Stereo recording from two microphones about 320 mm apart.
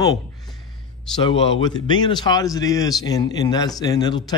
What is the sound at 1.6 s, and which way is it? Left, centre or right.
Speech, centre.